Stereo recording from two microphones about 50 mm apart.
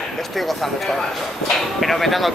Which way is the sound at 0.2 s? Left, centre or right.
Centre.